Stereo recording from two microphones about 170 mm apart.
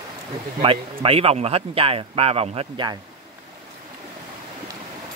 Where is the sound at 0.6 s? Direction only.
35° right (ahead or behind).